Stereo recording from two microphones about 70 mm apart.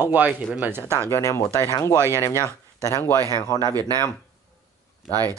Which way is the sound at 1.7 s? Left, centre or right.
Left.